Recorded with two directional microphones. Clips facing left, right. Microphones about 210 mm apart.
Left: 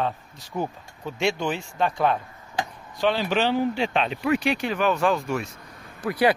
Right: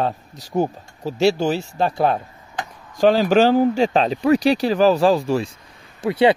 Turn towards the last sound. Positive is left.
turn(degrees=-25)  # may be behind; listen again after turning